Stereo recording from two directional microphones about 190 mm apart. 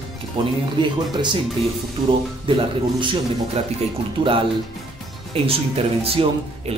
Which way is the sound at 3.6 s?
35° right (ahead or behind).